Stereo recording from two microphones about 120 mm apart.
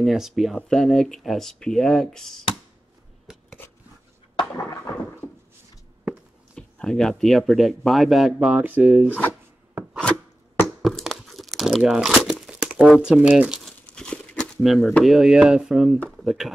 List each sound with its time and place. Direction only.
0.0 s speech: centre (ahead or behind)
4.4 s a sound: 30° left (ahead or behind)
6.5 s speech: 5° left (ahead or behind); by 9.1 s 15° right (ahead or behind)
10.8 s crumpling: centre (ahead or behind)
13.7 s crumpling: 10° left (ahead or behind)
15.0 s speech: 5° right (ahead or behind)